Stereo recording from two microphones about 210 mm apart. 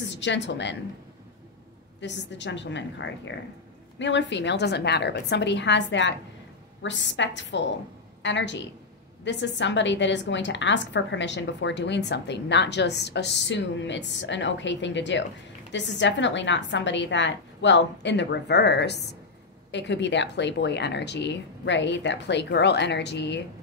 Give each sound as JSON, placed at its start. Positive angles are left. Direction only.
{"t": 0.0, "sound": "a woman's voice", "side_deg": 60}
{"t": 2.0, "sound": "a woman's voice", "side_deg": 60}